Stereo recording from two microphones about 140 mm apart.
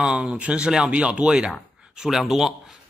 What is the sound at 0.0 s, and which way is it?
Speech, 5° right (ahead or behind).